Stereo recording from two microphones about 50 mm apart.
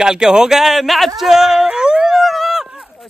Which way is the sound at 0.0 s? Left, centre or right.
Centre.